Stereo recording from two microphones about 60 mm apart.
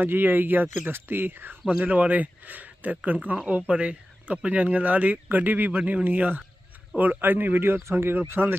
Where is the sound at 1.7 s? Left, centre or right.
Right.